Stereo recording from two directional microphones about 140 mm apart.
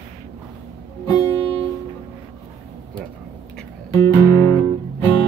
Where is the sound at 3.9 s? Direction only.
20° left (ahead or behind).